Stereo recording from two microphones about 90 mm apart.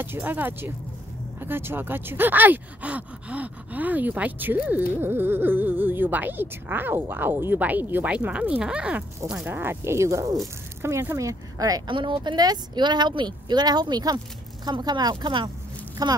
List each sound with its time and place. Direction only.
0.0 s speech: 25° right (ahead or behind)
9.5 s speech: 25° right (ahead or behind); by 11.8 s 40° right (ahead or behind)
11.9 s speech: 60° right (ahead or behind)
16.0 s speech: 45° right (ahead or behind)